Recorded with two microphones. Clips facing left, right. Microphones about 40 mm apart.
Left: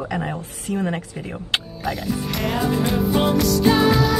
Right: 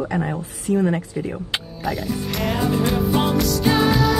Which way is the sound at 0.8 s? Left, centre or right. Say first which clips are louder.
Right 4 dB; left.